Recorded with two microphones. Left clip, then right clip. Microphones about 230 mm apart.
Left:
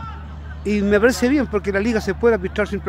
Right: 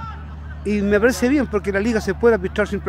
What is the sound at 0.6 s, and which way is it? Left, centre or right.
Speech, centre.